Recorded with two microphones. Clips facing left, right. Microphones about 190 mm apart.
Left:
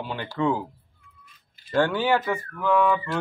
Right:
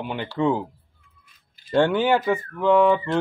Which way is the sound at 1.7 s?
20° right (ahead or behind).